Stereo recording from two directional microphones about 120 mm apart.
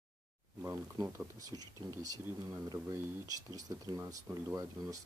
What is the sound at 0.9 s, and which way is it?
Speech, 25° right (ahead or behind).